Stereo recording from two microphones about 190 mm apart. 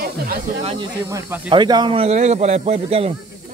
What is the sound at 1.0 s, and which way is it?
Speech, 15° right (ahead or behind).